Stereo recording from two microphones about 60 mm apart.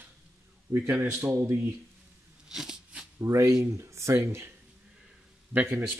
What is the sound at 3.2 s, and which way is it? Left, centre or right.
Speech, right.